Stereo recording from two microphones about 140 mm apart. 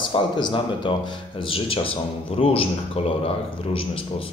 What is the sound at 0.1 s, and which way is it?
Speech, 35° left (ahead or behind).